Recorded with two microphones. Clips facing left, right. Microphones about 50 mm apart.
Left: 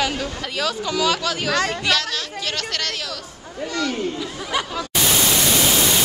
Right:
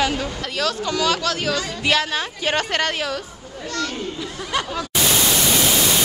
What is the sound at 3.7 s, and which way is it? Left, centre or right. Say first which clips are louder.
Speech: left 2 dB; centre.